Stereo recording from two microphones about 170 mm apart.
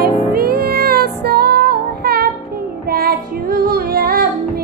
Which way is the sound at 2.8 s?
60° right (ahead or behind).